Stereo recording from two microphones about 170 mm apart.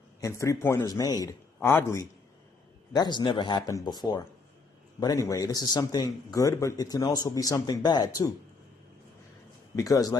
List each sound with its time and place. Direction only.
0.2 s a man's voice: 20° left (ahead or behind)
9.8 s speech: 20° left (ahead or behind)